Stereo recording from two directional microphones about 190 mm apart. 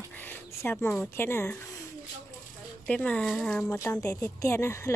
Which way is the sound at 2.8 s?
5° left (ahead or behind).